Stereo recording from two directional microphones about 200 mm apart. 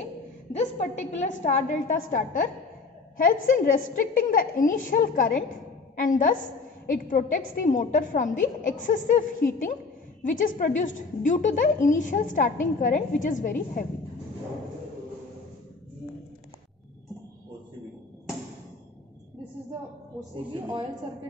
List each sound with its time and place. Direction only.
0.5 s a woman's voice: 35° left (ahead or behind)